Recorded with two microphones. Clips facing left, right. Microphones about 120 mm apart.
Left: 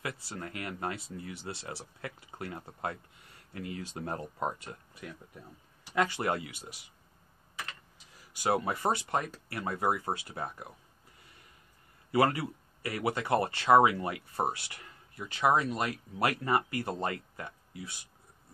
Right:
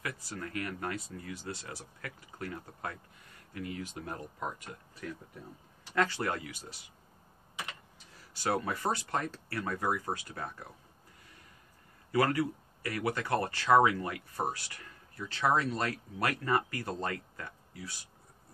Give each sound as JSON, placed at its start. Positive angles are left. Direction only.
{"t": 0.0, "sound": "speech", "side_deg": 25}
{"t": 5.0, "sound": "speech", "side_deg": 15}
{"t": 8.3, "sound": "speech", "side_deg": 20}
{"t": 12.1, "sound": "speech", "side_deg": 25}